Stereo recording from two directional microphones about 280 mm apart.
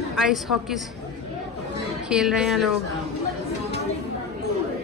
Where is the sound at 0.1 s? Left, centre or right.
Centre.